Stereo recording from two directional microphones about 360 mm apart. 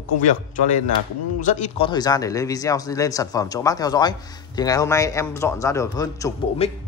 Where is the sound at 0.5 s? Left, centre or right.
Centre.